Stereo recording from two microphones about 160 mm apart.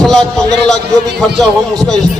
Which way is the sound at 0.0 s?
5° left (ahead or behind).